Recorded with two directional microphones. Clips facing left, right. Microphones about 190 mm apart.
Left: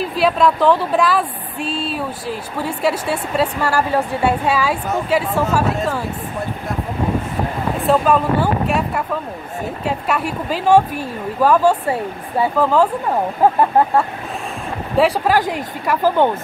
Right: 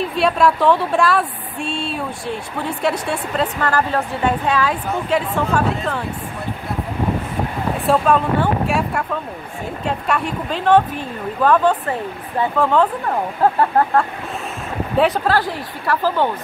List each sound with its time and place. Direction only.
0.0 s a woman's voice: centre (ahead or behind)
7.8 s a woman's voice: centre (ahead or behind)